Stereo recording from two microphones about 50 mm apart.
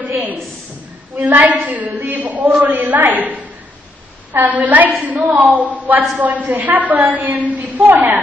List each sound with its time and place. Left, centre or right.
1.1 s a woman's voice: right